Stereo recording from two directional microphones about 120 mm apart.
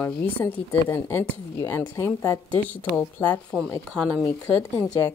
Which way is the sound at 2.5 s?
15° left (ahead or behind).